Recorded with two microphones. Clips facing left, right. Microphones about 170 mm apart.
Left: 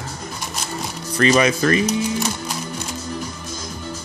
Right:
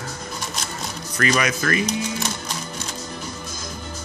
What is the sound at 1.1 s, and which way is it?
Speech, 25° left (ahead or behind).